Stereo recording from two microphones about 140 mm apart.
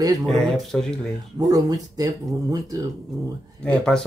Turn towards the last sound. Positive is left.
turn(degrees=5)  # may be behind; listen again after turning